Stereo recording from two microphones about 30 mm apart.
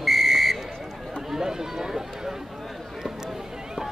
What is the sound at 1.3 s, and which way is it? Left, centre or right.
Speech, centre.